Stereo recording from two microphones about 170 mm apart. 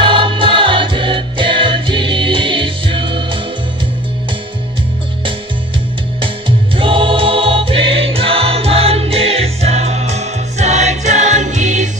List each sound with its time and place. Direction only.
0.0 s music: 30° right (ahead or behind)
6.2 s music: 30° right (ahead or behind)